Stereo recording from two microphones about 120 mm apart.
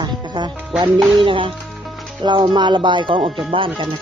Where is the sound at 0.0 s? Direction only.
40° right (ahead or behind).